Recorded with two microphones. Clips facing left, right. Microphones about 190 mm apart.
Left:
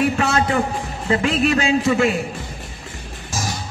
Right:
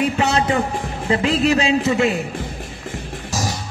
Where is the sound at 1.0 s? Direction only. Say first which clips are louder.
Right 1 dB; 20° right (ahead or behind).